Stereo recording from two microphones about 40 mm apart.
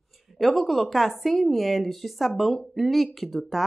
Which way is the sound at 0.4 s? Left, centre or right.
Centre.